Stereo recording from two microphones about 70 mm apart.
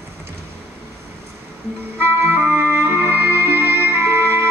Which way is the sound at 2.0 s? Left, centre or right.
Right.